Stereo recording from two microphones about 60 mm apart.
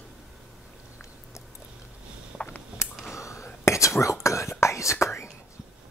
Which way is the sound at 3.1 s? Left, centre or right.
Left.